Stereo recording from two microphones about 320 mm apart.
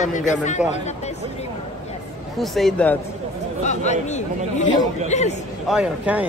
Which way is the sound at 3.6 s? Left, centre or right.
Left.